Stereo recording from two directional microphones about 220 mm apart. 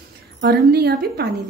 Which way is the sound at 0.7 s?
45° right (ahead or behind).